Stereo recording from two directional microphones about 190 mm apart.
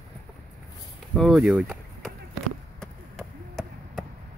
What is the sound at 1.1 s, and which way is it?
Speech, centre (ahead or behind).